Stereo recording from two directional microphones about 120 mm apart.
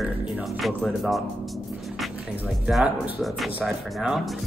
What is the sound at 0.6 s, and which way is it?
Speech, centre (ahead or behind).